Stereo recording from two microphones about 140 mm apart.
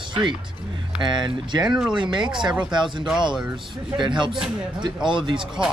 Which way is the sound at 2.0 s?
35° right (ahead or behind).